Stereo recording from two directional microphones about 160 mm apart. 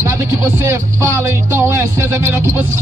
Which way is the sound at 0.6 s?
15° right (ahead or behind).